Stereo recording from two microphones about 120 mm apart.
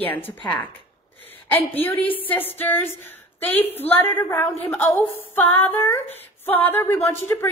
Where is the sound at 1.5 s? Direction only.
15° left (ahead or behind).